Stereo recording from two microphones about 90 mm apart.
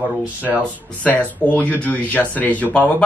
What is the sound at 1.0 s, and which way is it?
Speech, 15° left (ahead or behind).